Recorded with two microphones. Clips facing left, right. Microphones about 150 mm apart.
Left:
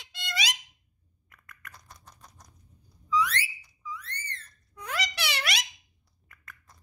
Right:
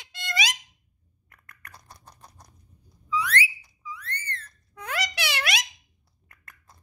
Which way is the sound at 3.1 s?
60° right (ahead or behind).